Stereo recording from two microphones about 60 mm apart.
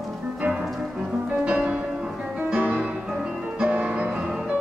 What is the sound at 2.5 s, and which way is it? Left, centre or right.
Music, right.